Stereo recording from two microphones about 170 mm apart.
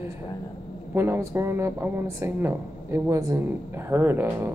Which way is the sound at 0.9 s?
15° right (ahead or behind).